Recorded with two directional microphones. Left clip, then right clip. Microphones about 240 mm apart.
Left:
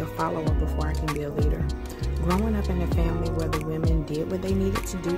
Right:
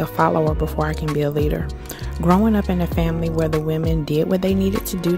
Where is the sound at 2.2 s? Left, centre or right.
Right.